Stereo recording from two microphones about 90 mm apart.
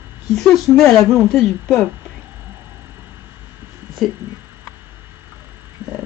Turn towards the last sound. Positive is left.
turn(degrees=-25)  # may be behind; listen again after turning